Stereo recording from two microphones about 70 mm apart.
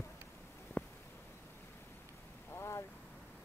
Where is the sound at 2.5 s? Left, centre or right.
Left.